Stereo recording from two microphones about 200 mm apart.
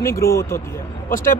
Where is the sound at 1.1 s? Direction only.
45° left (ahead or behind).